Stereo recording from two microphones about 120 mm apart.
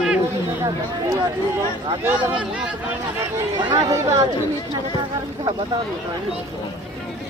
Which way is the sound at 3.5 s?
35° right (ahead or behind).